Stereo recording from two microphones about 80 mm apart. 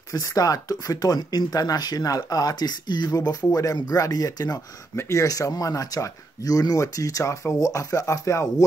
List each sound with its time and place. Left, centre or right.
0.1 s speech: left
3.1 s speech: left
4.9 s speech: left